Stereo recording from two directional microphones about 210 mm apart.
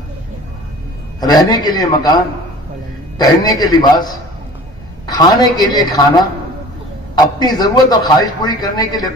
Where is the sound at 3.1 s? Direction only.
20° left (ahead or behind).